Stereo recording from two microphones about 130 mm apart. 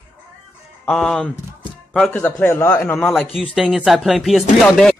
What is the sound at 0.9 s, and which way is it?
A man's voice, 5° left (ahead or behind).